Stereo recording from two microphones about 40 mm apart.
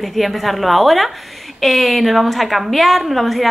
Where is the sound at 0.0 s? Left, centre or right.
Centre.